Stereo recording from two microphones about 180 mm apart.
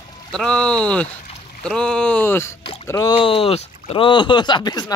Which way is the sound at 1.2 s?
40° left (ahead or behind).